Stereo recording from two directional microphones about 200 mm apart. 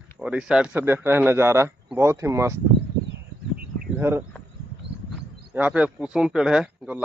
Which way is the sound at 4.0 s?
10° right (ahead or behind).